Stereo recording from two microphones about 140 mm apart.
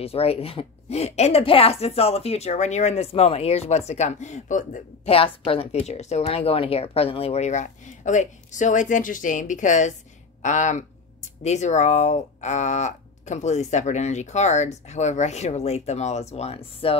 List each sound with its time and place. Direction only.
0.0 s speech: 45° left (ahead or behind); by 4.8 s 65° left (ahead or behind)
5.0 s speech: 40° left (ahead or behind)